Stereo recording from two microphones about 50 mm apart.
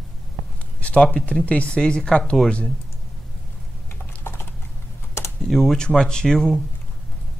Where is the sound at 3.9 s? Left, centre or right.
Left.